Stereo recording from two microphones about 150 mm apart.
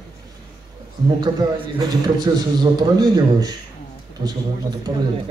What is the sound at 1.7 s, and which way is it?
A man's voice, 30° right (ahead or behind).